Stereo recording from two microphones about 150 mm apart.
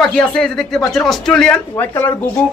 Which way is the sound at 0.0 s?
5° left (ahead or behind).